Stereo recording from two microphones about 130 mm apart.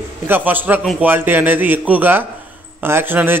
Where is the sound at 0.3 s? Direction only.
15° right (ahead or behind).